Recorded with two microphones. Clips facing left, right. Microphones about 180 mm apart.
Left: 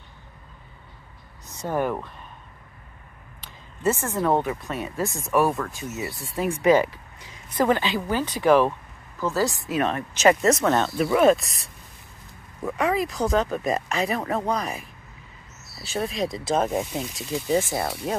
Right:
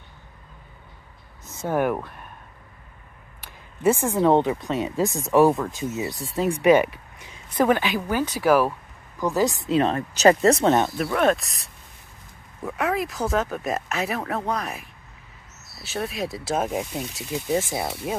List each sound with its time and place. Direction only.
1.6 s a woman's voice: 10° right (ahead or behind)
3.3 s a woman's voice: 15° right (ahead or behind)
9.7 s speech: 30° right (ahead or behind)
11.1 s a woman's voice: 5° left (ahead or behind); by 18.1 s 10° right (ahead or behind)